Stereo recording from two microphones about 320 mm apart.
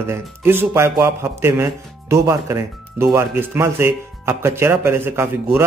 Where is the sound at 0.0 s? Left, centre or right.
Centre.